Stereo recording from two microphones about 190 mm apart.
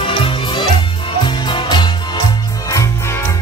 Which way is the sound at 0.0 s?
25° left (ahead or behind).